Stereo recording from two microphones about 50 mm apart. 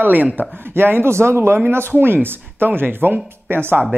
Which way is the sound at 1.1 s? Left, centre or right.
Right.